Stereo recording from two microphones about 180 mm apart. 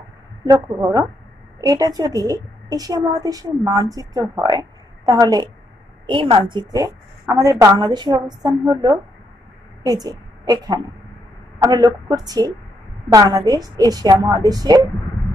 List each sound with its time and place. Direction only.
0.5 s a woman's voice: 15° right (ahead or behind)